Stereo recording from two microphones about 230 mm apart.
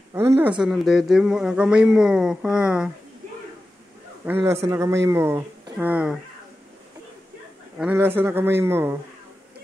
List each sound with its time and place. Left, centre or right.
0.1 s speech: centre
4.3 s speech: centre
7.8 s speech: centre